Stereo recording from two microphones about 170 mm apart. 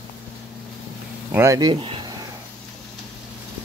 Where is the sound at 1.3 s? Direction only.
15° right (ahead or behind).